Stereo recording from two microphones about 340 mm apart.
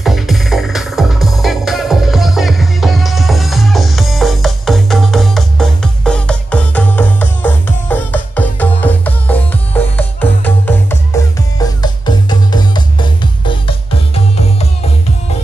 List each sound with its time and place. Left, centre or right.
0.0 s music: centre